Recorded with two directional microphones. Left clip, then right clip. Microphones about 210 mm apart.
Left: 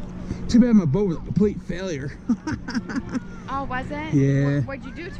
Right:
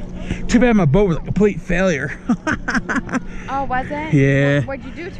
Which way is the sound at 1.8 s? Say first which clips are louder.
Right 12 dB; 20° left (ahead or behind).